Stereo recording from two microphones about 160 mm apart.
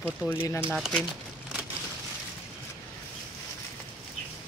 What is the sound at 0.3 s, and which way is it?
Speech, 10° left (ahead or behind).